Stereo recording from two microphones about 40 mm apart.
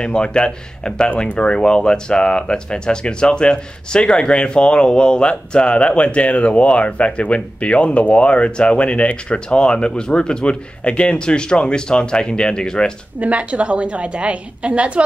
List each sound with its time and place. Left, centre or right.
0.0 s speech: left
13.2 s a woman's voice: right